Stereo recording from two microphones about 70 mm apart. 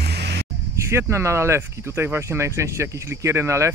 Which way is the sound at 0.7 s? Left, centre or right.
Right.